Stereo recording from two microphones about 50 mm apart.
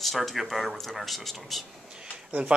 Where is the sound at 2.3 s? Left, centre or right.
Right.